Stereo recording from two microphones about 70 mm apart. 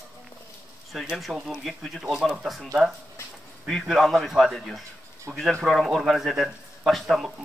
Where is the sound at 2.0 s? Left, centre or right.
Centre.